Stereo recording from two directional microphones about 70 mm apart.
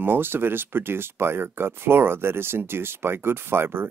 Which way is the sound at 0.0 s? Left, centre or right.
Right.